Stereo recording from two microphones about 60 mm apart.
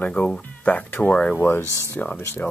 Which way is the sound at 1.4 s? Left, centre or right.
Left.